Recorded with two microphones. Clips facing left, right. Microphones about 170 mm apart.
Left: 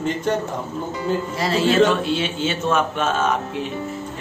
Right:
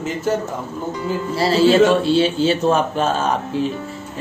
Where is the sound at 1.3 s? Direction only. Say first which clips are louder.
Right 5 dB; 30° right (ahead or behind).